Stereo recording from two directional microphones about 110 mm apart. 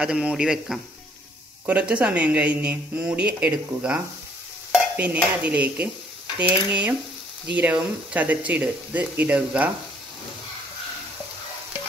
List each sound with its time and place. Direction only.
0.0 s speech: 10° right (ahead or behind)